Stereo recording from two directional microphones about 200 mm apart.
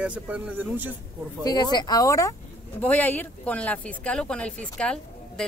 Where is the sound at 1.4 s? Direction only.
20° left (ahead or behind).